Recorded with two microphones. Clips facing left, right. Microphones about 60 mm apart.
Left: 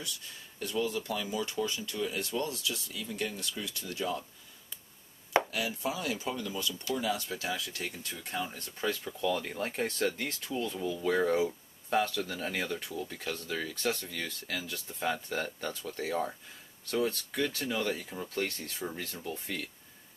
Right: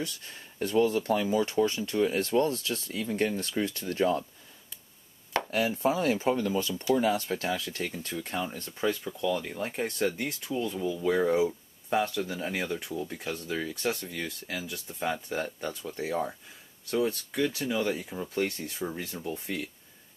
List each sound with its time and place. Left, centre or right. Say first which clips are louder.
0.0 s speech: right 6 dB; right
5.5 s speech: right 7 dB; right
9.2 s speech: right 1 dB; centre